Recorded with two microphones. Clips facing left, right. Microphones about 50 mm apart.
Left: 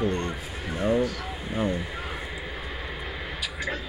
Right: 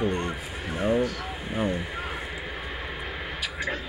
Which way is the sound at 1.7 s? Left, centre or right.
Right.